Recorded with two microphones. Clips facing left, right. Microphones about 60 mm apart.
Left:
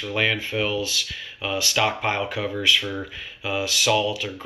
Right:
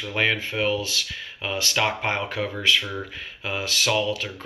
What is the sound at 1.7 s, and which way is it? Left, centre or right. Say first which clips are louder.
Speech: left 1 dB; right.